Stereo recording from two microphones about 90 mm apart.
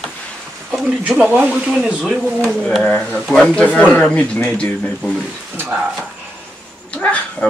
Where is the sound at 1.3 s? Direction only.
15° right (ahead or behind).